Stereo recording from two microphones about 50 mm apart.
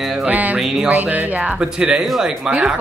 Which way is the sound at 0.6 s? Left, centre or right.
Centre.